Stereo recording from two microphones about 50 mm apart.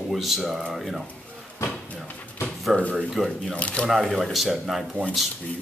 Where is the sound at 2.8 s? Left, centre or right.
Left.